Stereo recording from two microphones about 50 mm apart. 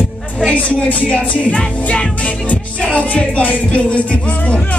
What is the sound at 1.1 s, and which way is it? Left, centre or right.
Music, left.